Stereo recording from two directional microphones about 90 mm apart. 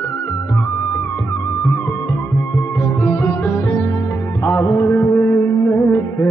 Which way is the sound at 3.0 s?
25° left (ahead or behind).